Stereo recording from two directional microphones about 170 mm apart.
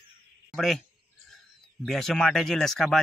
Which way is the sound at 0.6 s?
Centre (ahead or behind).